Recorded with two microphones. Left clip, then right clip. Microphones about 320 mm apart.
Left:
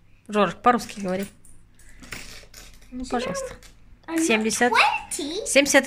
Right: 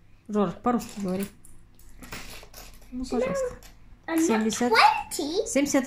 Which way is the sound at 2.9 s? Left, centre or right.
Left.